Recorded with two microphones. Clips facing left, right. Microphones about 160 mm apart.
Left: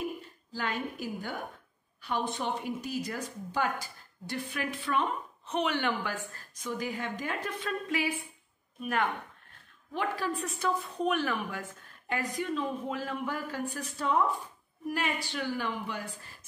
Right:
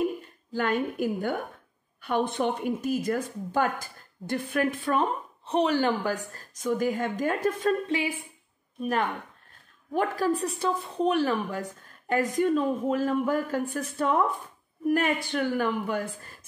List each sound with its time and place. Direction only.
0.5 s a woman's voice: 55° right (ahead or behind)
7.8 s speech: 30° right (ahead or behind)
9.9 s a woman's voice: 40° right (ahead or behind)
12.1 s a woman's voice: 45° right (ahead or behind)